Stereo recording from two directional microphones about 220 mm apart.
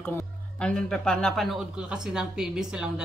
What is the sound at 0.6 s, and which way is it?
Speech, 5° left (ahead or behind).